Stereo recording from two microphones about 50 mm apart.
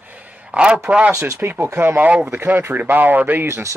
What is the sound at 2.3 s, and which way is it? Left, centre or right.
Speech, right.